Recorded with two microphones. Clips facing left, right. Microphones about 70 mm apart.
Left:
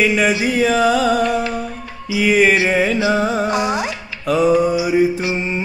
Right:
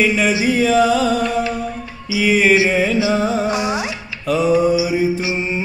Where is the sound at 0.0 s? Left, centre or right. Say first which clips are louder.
Left 1 dB; centre.